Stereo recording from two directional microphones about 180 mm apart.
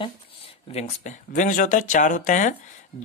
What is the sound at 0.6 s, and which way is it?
Speech, 40° left (ahead or behind).